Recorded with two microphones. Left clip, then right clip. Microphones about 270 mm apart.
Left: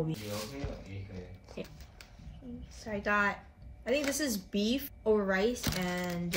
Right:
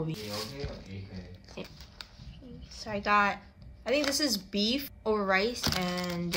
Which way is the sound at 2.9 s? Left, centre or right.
Right.